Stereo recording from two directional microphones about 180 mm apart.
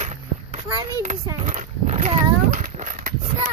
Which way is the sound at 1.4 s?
40° right (ahead or behind).